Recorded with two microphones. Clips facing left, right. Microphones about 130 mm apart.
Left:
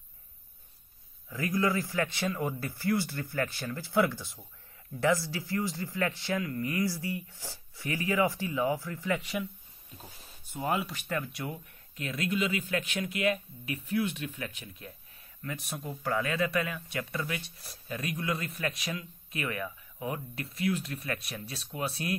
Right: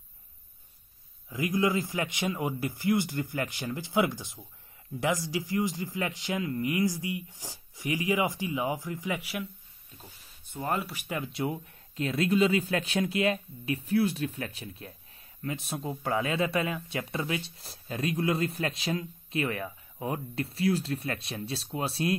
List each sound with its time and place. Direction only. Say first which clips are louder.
1.3 s a man's voice: right 2 dB; 15° right (ahead or behind)
10.5 s speech: even; 5° left (ahead or behind)
11.0 s a man's voice: left 1 dB; 15° right (ahead or behind)
11.3 s speech: right 6 dB; 30° right (ahead or behind)